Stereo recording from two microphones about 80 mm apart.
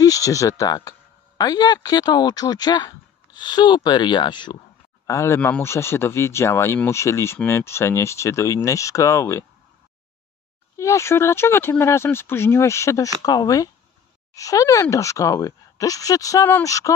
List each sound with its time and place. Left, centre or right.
0.0 s speech: left
5.0 s speech: left
10.8 s speech: left
13.2 s speech: left